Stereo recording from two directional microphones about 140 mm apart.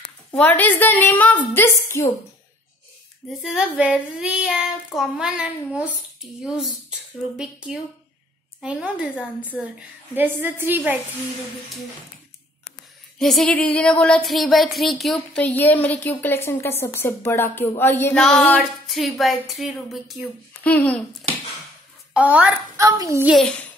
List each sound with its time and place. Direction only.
0.3 s speech: 10° left (ahead or behind)
3.3 s child singing: 5° right (ahead or behind)
6.4 s speech: 5° right (ahead or behind)
7.3 s child singing: 5° right (ahead or behind)
13.2 s speech: 5° left (ahead or behind)
20.6 s speech: 10° left (ahead or behind)
22.1 s a child's voice: 10° right (ahead or behind)
22.8 s a child's voice: 25° right (ahead or behind)